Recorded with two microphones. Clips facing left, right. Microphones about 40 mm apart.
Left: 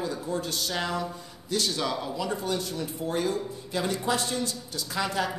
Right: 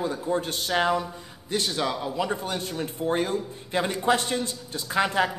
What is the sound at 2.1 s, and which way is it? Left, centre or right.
A woman's voice, right.